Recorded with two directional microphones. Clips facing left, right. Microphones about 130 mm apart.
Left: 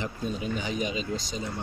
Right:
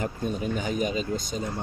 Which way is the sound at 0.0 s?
45° right (ahead or behind).